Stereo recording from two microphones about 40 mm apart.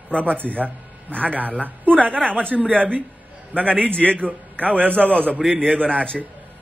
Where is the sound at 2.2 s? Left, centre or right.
Left.